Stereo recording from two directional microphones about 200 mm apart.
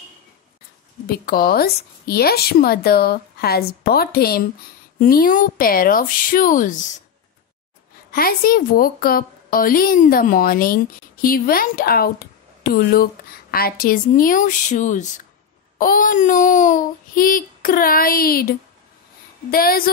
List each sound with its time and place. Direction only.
1.0 s a woman's voice: 50° left (ahead or behind)
8.1 s a woman's voice: 45° left (ahead or behind)